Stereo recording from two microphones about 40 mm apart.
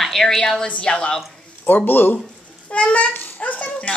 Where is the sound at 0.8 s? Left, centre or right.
Left.